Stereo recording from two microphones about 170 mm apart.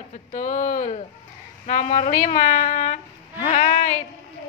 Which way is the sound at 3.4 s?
40° left (ahead or behind).